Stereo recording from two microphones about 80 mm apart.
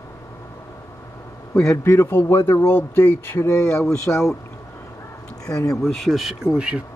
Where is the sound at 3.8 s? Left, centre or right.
Centre.